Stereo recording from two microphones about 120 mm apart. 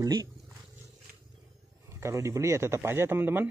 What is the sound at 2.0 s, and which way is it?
Speech, 25° right (ahead or behind).